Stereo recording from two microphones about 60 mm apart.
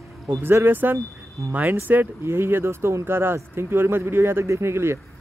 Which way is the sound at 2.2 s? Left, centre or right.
Right.